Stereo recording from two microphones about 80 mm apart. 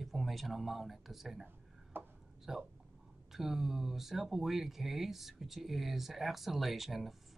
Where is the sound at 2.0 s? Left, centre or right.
Right.